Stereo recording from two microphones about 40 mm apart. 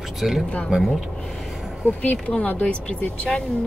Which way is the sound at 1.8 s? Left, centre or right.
Left.